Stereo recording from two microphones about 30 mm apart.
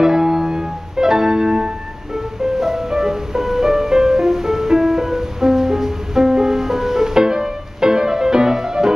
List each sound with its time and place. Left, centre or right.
0.0 s piano: centre
2.1 s music: centre